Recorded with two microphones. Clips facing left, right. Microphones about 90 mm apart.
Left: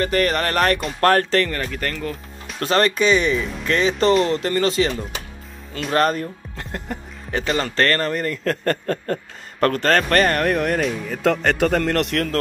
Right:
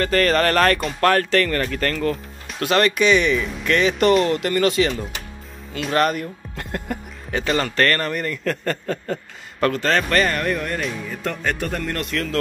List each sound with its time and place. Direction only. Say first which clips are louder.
0.0 s speech: right 2 dB; 20° left (ahead or behind)
1.5 s speech: right 4 dB; 10° left (ahead or behind)
2.6 s speech: even; 35° left (ahead or behind)
5.9 s speech: left 1 dB; 35° left (ahead or behind); by 10.8 s 60° left (ahead or behind)
11.1 s a man's voice: left 6 dB; 80° left; by 12.3 s 65° left (ahead or behind)